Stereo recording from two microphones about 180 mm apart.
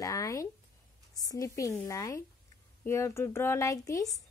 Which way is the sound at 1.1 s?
20° left (ahead or behind).